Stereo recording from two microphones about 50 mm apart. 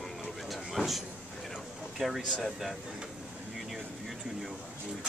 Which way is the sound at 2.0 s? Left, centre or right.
Centre.